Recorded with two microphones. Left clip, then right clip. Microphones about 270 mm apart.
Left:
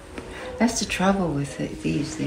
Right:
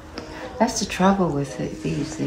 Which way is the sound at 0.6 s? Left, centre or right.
Right.